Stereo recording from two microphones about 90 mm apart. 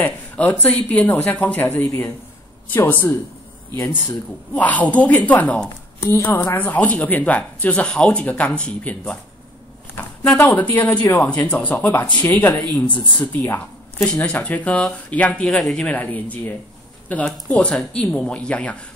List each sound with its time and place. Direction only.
0.0 s speech: 20° left (ahead or behind)
1.9 s speech: 35° left (ahead or behind)
2.7 s speech: 20° left (ahead or behind)
4.6 s speech: 15° left (ahead or behind)
6.0 s speech: 25° left (ahead or behind); by 9.2 s 10° left (ahead or behind)
10.2 s speech: 30° left (ahead or behind)
10.6 s speech: 15° left (ahead or behind)
15.9 s speech: 15° left (ahead or behind)